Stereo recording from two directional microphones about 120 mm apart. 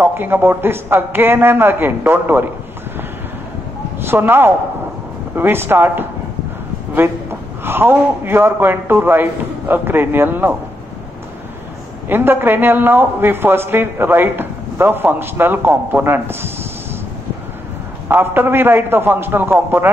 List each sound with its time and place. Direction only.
0.0 s a man's voice: 15° right (ahead or behind)
4.0 s a man's voice: 20° right (ahead or behind)
7.6 s a man's voice: 20° right (ahead or behind)
12.1 s a man's voice: 20° right (ahead or behind)
18.0 s a man's voice: 15° right (ahead or behind)